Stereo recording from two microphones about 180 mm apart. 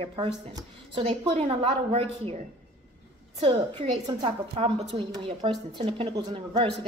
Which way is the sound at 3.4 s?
30° right (ahead or behind).